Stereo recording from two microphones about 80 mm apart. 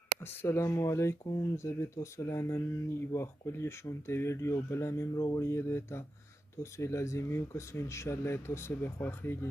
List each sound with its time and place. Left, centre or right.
0.2 s speech: left